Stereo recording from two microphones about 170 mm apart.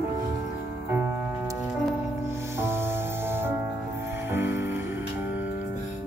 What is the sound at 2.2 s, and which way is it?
Music, 15° right (ahead or behind).